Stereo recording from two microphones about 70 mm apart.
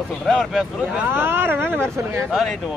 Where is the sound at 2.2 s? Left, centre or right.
Centre.